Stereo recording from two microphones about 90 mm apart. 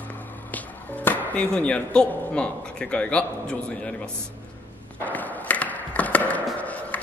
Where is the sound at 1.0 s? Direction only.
20° left (ahead or behind).